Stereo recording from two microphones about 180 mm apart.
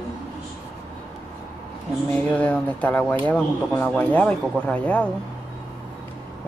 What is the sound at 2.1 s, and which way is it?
Speech, 10° left (ahead or behind).